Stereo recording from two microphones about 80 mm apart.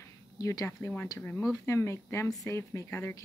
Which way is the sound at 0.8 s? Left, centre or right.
Left.